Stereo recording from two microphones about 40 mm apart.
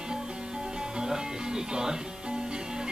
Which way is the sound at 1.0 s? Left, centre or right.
Centre.